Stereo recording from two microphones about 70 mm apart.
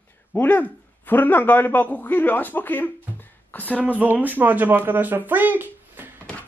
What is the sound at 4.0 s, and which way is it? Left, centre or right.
Speech, right.